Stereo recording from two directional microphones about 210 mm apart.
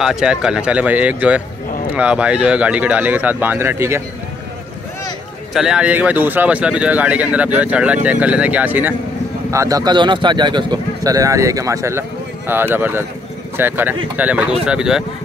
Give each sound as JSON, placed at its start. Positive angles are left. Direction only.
{"t": 0.0, "sound": "speech", "side_deg": -5}
{"t": 5.5, "sound": "speech", "side_deg": -5}